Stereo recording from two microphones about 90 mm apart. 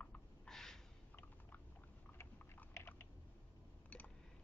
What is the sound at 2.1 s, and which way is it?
Chewing, 25° left (ahead or behind).